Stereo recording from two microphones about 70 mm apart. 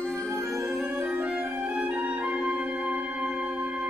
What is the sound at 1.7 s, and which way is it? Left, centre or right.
Music, centre.